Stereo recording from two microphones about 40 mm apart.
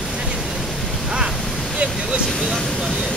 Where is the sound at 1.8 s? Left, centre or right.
Right.